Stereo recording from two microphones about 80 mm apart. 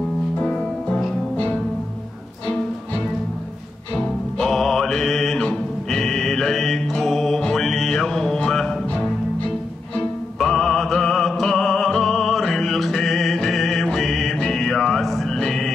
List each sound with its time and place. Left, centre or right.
0.4 s music: centre
4.0 s music: centre
10.4 s music: centre